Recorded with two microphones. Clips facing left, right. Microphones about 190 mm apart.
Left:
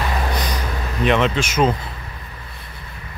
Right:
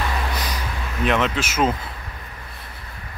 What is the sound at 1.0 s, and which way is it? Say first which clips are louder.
Speech: left 3 dB; centre (ahead or behind).